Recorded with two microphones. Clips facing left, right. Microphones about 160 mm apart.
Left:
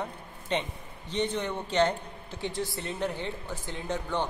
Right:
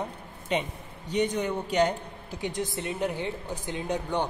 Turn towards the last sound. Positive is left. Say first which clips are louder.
# right 2 dB
turn(degrees=-15)  # may be behind; listen again after turning